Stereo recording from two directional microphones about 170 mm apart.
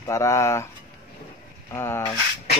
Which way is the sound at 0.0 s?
15° left (ahead or behind).